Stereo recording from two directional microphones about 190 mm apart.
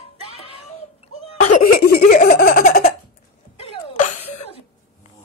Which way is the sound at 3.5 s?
30° left (ahead or behind).